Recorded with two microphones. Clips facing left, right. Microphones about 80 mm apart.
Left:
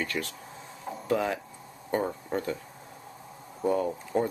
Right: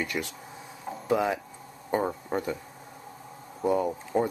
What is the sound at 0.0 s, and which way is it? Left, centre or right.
Speech, centre.